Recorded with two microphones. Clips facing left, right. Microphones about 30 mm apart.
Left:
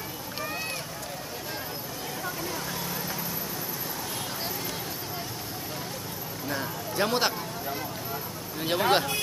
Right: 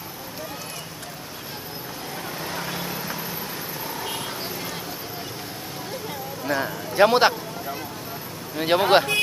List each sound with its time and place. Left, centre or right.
2.4 s vehicle: right
6.4 s a man's voice: right
8.5 s speech: right